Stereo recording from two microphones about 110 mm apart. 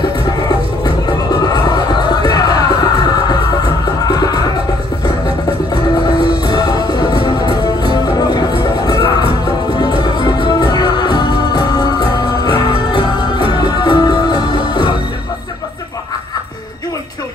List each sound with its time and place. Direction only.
0.5 s music: 35° left (ahead or behind)
4.1 s music: 35° left (ahead or behind)
6.0 s music: 40° left (ahead or behind)